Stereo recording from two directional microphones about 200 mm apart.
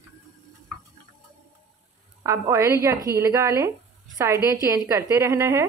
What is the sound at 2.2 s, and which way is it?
A woman's voice, 15° right (ahead or behind).